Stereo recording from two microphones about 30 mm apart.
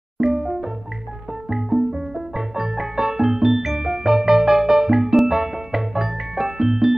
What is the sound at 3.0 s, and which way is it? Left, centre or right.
Music, centre.